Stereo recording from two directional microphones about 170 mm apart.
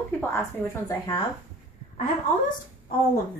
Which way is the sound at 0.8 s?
20° left (ahead or behind).